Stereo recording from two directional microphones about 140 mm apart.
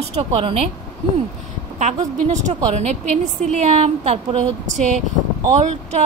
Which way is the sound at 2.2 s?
55° right (ahead or behind).